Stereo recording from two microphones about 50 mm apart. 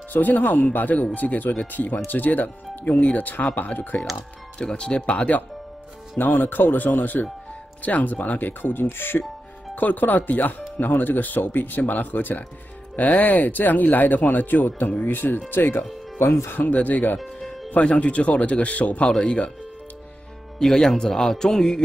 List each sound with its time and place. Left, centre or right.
0.1 s speech: left
4.6 s speech: centre
6.1 s speech: left
9.8 s speech: left
16.6 s speech: left
17.2 s music: centre
17.6 s speech: left
19.0 s a man's voice: centre
20.5 s a man's voice: centre